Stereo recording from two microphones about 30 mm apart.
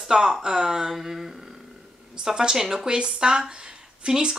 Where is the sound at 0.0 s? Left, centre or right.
Right.